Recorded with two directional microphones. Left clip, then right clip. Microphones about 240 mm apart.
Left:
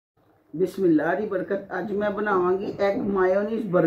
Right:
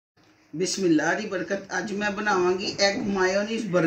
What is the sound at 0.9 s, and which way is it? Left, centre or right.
Speech, right.